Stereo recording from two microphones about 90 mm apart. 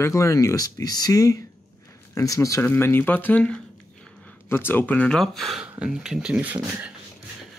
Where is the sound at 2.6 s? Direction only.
25° left (ahead or behind).